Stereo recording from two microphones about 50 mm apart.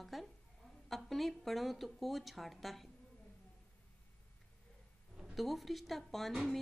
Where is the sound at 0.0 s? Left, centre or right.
Centre.